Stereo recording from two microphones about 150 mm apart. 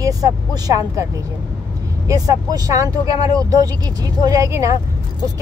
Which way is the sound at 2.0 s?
25° right (ahead or behind).